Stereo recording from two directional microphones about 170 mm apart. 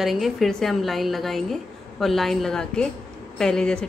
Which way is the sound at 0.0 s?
Centre (ahead or behind).